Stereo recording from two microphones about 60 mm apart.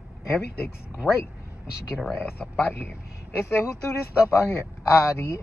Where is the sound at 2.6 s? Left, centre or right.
Left.